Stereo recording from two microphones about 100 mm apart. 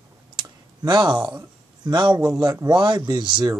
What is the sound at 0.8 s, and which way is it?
Speech, 45° right (ahead or behind).